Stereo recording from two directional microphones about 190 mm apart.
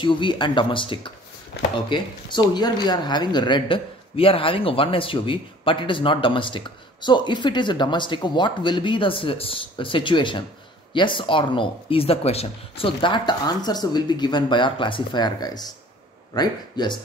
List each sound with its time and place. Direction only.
0.0 s speech: 25° left (ahead or behind)